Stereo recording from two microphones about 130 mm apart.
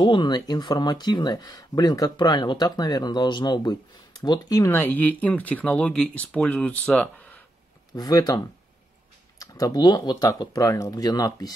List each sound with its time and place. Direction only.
0.0 s speech: 35° left (ahead or behind); by 7.3 s 10° left (ahead or behind)
7.9 s speech: 30° left (ahead or behind)